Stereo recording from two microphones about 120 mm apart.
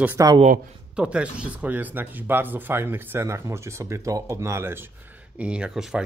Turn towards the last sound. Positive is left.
turn(degrees=-5)  # may be behind; listen again after turning